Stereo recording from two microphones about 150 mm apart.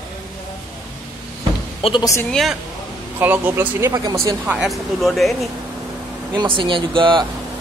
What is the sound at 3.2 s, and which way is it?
Speech, 10° right (ahead or behind).